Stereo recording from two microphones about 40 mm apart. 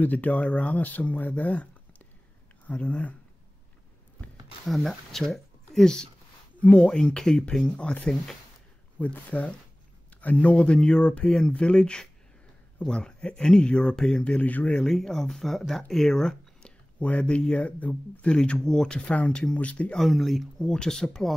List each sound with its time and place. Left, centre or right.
0.0 s speech: left
4.6 s speech: centre
6.7 s speech: centre
7.7 s speech: left
8.9 s speech: left
11.2 s speech: centre
14.4 s speech: left
14.8 s speech: centre
17.0 s speech: left
18.3 s speech: left
20.0 s speech: centre